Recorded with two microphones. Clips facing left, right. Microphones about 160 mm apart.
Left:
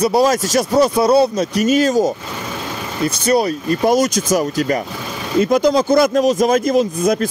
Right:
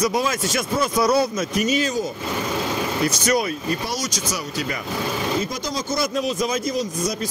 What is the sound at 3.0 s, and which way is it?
Speech, 30° left (ahead or behind).